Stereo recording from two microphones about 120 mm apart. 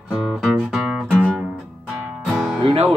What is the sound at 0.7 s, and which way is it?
Music, 5° right (ahead or behind).